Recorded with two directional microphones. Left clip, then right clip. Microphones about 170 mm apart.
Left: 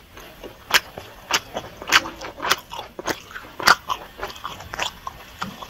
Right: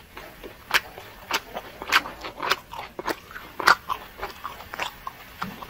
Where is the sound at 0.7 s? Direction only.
20° left (ahead or behind).